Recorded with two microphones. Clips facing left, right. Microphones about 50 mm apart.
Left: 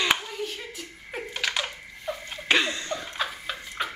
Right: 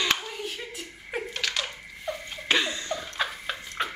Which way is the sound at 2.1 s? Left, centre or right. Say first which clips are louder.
Left 2 dB; centre.